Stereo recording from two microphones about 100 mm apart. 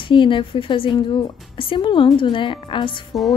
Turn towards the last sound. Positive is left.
turn(degrees=55)  # may be behind; listen again after turning